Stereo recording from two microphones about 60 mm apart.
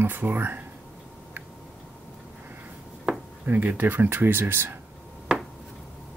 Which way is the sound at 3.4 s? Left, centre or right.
Right.